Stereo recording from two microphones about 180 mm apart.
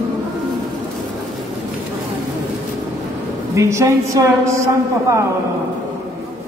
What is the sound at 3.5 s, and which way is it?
A woman's voice, 15° right (ahead or behind).